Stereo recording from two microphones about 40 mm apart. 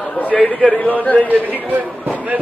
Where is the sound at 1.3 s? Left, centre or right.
Right.